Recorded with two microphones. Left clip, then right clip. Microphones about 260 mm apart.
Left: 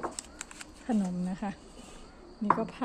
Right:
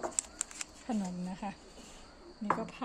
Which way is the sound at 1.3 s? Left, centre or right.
Centre.